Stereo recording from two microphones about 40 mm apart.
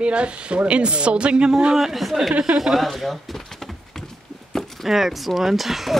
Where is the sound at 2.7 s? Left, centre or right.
Centre.